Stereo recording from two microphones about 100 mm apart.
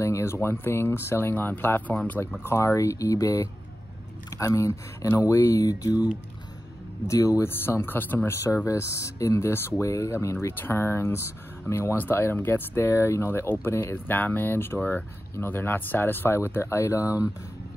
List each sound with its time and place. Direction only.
0.0 s speech: 30° left (ahead or behind)
7.1 s speech: 35° left (ahead or behind)
7.4 s speech: 20° left (ahead or behind)
8.6 s speech: 30° left (ahead or behind)
10.3 s speech: 20° left (ahead or behind)